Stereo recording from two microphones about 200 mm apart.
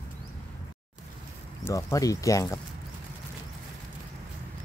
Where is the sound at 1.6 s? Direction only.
15° left (ahead or behind).